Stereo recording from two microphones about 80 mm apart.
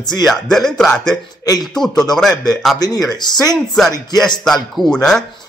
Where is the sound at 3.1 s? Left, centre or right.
Left.